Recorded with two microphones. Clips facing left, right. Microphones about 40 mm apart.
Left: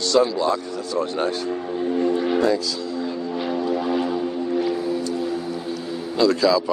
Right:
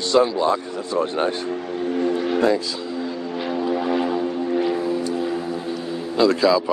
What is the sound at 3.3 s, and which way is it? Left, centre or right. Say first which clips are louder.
Vehicle: right 1 dB; centre.